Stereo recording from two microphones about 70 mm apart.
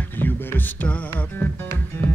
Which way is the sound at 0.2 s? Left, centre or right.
Left.